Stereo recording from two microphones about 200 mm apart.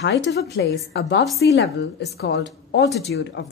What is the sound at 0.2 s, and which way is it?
A woman's voice, 55° left (ahead or behind).